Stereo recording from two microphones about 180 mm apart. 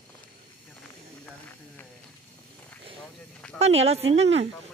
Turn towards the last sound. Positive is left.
turn(degrees=-35)  # may be behind; listen again after turning